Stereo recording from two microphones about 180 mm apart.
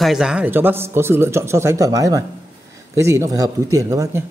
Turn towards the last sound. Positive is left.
turn(degrees=-15)  # may be behind; listen again after turning